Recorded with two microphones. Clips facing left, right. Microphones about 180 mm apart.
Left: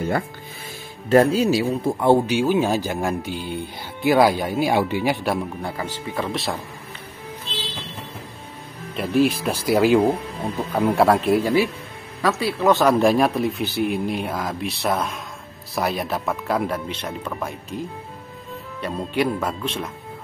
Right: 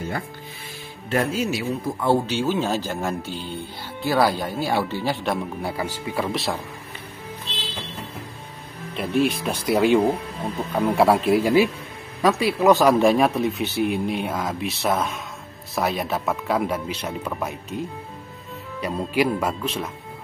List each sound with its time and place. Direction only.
1.0 s speech: 40° left (ahead or behind); by 5.4 s 10° left (ahead or behind)
5.6 s speech: 10° right (ahead or behind)
8.9 s speech: centre (ahead or behind)
11.4 s speech: 15° right (ahead or behind)
12.7 s speech: centre (ahead or behind)
18.8 s speech: 5° right (ahead or behind)